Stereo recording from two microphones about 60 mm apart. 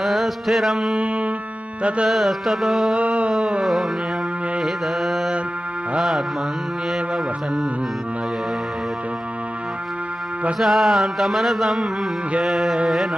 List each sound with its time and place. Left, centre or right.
0.0 s music: centre
0.9 s music: right
2.0 s music: centre
3.0 s a sound: right
4.6 s mantra: centre
10.6 s music: centre